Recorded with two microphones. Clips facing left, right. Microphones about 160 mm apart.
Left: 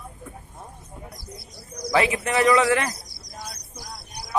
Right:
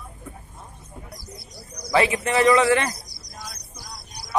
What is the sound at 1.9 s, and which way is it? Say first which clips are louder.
A man's voice: right 1 dB; centre (ahead or behind).